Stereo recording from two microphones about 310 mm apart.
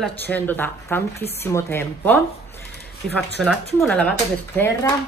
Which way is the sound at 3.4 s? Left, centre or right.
Centre.